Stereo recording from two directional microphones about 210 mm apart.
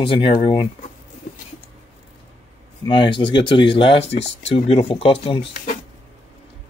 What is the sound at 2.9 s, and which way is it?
Speech, 25° left (ahead or behind).